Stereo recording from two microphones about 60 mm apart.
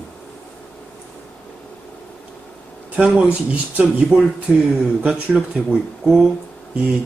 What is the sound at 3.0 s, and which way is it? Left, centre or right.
Speech, right.